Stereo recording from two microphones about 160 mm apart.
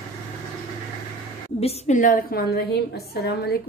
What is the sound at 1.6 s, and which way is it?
A woman's voice, 45° left (ahead or behind).